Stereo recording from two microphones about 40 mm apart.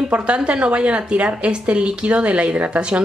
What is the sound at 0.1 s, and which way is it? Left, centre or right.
A woman's voice, right.